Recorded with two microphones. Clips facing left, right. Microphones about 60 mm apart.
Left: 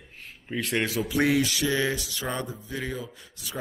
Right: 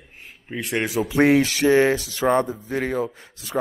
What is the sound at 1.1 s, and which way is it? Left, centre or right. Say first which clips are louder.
A man's voice: right 8 dB; right.